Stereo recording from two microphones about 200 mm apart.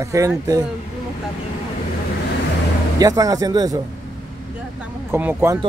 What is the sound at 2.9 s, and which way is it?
Speech, 20° right (ahead or behind).